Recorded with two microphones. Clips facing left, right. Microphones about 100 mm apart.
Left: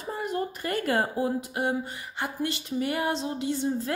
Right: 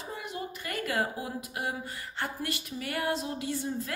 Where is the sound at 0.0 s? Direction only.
45° left (ahead or behind).